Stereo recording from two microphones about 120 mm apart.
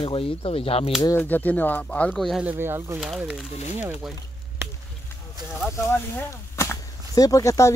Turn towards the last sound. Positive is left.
turn(degrees=25)  # may be behind; listen again after turning